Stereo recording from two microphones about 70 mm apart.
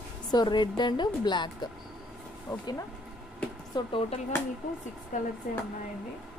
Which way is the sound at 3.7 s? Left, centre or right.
Left.